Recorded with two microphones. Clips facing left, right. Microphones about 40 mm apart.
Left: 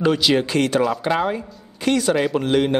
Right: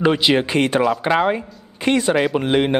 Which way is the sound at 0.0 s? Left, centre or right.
Right.